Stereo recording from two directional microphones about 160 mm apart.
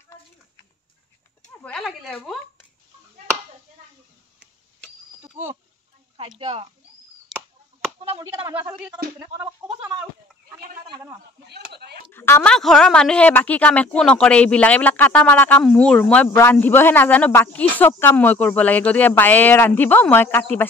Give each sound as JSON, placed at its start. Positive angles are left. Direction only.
{"t": 1.6, "sound": "speech", "side_deg": 5}
{"t": 5.3, "sound": "speech", "side_deg": -15}
{"t": 6.1, "sound": "speech", "side_deg": -35}
{"t": 7.3, "sound": "chop", "side_deg": 0}
{"t": 8.5, "sound": "speech", "side_deg": -15}
{"t": 10.6, "sound": "speech", "side_deg": -65}
{"t": 11.7, "sound": "speech", "side_deg": -90}
{"t": 12.1, "sound": "speech", "side_deg": 15}
{"t": 12.5, "sound": "speech", "side_deg": 5}